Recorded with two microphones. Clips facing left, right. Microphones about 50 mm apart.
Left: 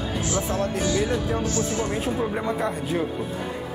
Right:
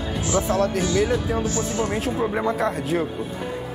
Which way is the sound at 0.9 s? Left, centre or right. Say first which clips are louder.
Right 3 dB; centre.